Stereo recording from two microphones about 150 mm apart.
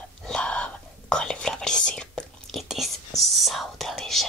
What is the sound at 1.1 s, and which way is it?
Whispering, 5° left (ahead or behind).